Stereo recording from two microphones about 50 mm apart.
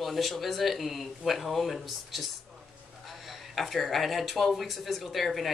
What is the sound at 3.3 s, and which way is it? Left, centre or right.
Speech, centre.